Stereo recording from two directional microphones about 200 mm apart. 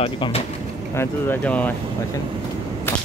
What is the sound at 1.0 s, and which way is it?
Speech, 10° left (ahead or behind).